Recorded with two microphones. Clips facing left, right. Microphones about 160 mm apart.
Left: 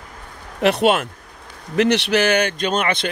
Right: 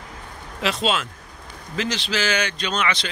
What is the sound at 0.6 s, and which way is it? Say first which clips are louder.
Speech: left 7 dB; 60° left (ahead or behind).